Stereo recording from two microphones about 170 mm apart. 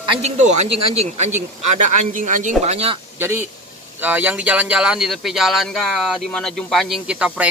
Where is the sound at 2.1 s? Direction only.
50° right (ahead or behind).